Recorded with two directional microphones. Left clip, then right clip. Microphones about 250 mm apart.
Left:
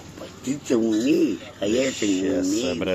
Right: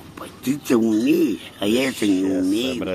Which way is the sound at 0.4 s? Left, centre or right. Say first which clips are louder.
Right 3 dB; right.